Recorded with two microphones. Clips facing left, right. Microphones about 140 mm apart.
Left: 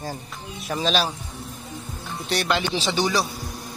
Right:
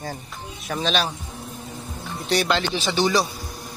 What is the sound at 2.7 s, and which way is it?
Speech, 20° left (ahead or behind).